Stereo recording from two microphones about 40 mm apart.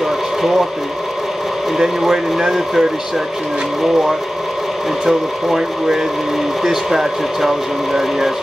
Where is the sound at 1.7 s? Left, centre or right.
Centre.